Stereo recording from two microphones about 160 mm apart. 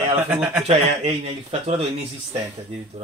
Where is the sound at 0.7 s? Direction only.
40° right (ahead or behind).